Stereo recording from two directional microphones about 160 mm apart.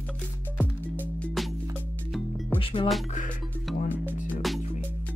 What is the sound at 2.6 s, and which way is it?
Music, 35° left (ahead or behind).